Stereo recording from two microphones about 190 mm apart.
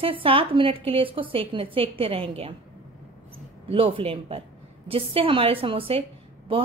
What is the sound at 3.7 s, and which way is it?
A woman's voice, 30° right (ahead or behind).